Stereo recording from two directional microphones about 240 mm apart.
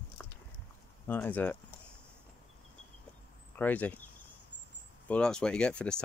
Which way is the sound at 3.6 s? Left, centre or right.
Centre.